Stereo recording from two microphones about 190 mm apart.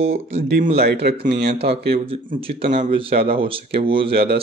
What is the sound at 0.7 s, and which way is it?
Speech, 55° right (ahead or behind).